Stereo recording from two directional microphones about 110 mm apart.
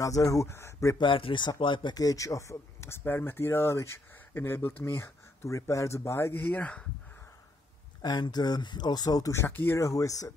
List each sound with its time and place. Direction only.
0.0 s speech: 30° left (ahead or behind)
0.9 s speech: 50° left (ahead or behind); by 6.9 s 10° left (ahead or behind)
8.0 s speech: 40° left (ahead or behind)